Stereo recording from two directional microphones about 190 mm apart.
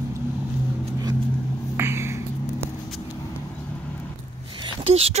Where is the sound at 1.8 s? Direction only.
15° right (ahead or behind).